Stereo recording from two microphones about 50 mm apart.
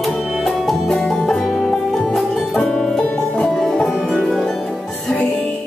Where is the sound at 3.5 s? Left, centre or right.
Centre.